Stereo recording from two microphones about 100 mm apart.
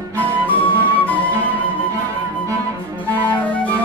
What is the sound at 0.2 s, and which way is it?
Flute, 15° left (ahead or behind).